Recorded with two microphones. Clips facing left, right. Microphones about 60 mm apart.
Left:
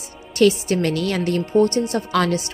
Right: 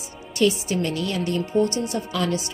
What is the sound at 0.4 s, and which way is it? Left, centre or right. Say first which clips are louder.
A woman's voice: left 5 dB; left.